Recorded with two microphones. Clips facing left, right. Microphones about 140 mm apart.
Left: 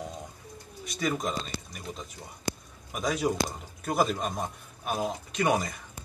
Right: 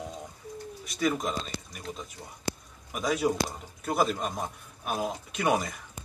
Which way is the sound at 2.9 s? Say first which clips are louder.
Right 1 dB; 5° right (ahead or behind).